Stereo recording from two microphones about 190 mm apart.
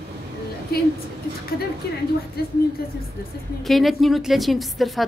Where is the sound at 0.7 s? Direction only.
55° left (ahead or behind).